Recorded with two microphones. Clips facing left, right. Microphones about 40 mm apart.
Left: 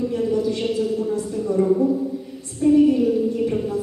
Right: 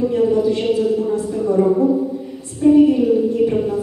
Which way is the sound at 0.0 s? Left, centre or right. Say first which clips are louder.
Right 6 dB; centre.